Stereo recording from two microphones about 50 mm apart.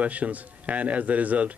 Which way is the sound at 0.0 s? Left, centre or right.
Right.